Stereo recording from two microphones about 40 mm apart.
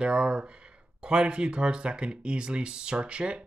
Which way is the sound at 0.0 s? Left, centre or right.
Right.